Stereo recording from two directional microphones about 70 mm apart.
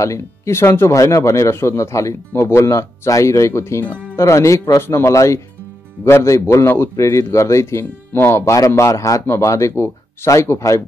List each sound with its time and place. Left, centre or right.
0.0 s a man's voice: left